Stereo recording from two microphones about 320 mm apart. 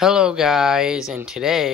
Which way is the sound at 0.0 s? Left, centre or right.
Centre.